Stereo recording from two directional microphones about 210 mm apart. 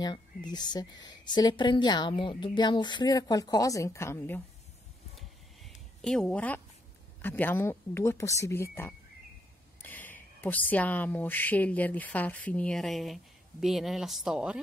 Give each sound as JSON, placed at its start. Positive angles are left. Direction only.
{"t": 0.0, "sound": "speech", "side_deg": 20}
{"t": 5.6, "sound": "a sound", "side_deg": 0}
{"t": 7.2, "sound": "speech", "side_deg": 10}